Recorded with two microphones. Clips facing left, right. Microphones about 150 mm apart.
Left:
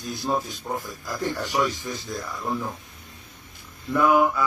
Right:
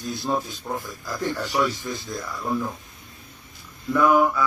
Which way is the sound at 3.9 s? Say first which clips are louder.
Right 1 dB; 15° left (ahead or behind).